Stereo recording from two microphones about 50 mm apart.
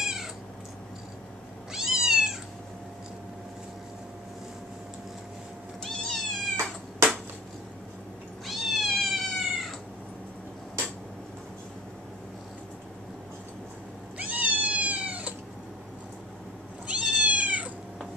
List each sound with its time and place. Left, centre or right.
0.0 s cat: centre
1.7 s cat: centre
5.9 s cat: centre
8.5 s cat: centre
14.1 s cat: right
16.8 s cat: right